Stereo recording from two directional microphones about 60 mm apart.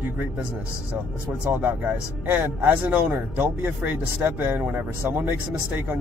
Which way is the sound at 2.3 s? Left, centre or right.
Right.